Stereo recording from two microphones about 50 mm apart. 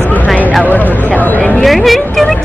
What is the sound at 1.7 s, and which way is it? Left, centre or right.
Speech, centre.